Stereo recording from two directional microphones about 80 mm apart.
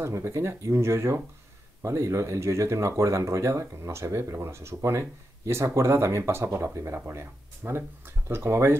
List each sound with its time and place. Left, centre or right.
0.0 s speech: right